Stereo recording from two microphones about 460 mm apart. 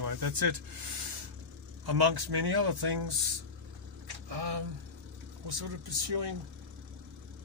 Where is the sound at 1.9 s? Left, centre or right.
Right.